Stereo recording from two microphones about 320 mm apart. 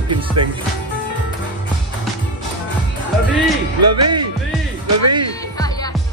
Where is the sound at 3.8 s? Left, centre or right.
Right.